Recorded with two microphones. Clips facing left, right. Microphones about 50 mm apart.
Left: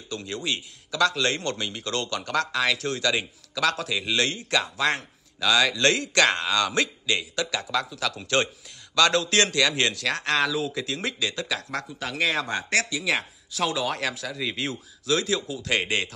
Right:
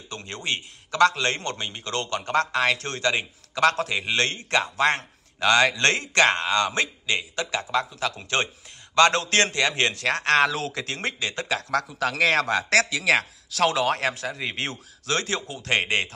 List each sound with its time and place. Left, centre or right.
0.1 s a man's voice: right
3.5 s a man's voice: right
8.9 s speech: right
13.9 s a man's voice: right
14.7 s speech: right